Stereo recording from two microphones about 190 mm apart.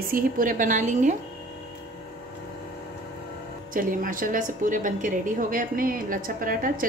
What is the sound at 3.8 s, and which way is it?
A woman's voice, 45° right (ahead or behind).